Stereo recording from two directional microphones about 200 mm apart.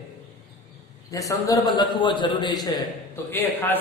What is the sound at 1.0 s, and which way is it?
A man's voice, 15° left (ahead or behind).